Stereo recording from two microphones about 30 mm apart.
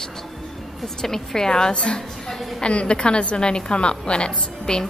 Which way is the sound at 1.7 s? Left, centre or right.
Left.